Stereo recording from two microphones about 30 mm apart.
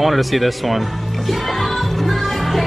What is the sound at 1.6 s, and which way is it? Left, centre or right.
Music, centre.